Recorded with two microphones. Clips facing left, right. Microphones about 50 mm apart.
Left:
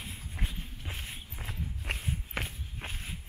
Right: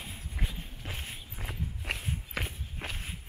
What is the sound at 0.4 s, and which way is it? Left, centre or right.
Walk, centre.